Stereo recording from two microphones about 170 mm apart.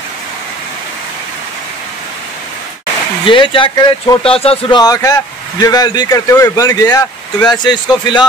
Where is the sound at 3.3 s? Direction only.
30° left (ahead or behind).